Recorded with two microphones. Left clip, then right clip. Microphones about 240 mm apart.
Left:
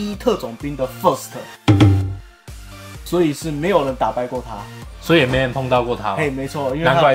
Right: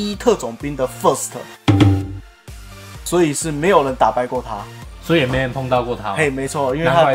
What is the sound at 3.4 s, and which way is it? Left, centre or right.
Speech, right.